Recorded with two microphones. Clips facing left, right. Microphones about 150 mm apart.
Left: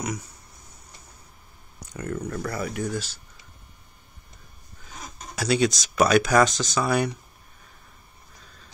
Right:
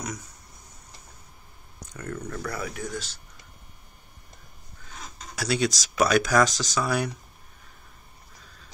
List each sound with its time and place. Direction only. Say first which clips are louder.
2.0 s speech: left 4 dB; 10° left (ahead or behind)
5.3 s speech: left 3 dB; centre (ahead or behind)